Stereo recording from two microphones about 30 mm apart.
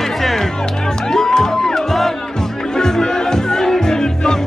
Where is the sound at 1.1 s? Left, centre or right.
Centre.